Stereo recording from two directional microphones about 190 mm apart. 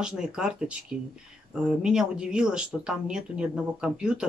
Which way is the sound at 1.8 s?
5° right (ahead or behind).